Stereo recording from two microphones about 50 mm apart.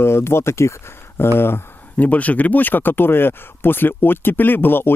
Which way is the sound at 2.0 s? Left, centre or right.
Left.